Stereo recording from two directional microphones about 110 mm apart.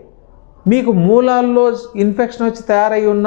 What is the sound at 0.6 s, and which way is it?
Speech, 15° left (ahead or behind).